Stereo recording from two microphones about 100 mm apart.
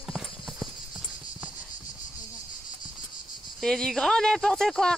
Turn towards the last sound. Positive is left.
turn(degrees=5)  # may be behind; listen again after turning